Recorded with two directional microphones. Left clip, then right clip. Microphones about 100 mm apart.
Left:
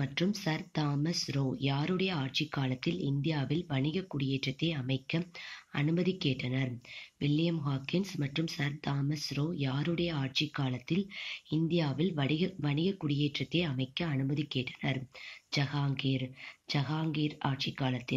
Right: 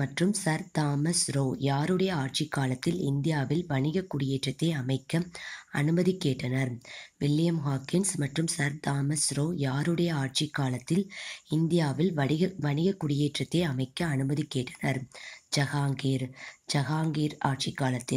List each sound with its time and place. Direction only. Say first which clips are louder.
0.0 s speech: right 4 dB; 35° right (ahead or behind)